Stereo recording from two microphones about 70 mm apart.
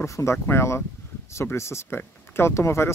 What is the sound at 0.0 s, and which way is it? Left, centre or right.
Speech, left.